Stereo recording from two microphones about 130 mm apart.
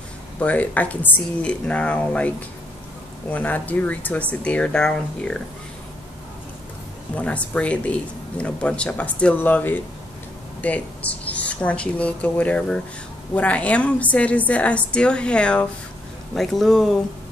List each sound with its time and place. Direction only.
0.4 s speech: 10° left (ahead or behind)
7.2 s speech: 10° left (ahead or behind)